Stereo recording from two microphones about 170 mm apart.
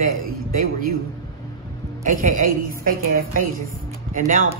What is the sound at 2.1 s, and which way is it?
A man's voice, 55° right (ahead or behind).